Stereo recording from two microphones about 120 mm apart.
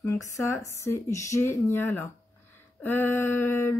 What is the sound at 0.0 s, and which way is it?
Speech, 25° left (ahead or behind).